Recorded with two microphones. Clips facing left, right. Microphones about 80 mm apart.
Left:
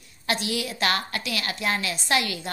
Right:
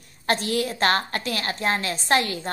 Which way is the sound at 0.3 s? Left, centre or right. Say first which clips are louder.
Right 4 dB; right.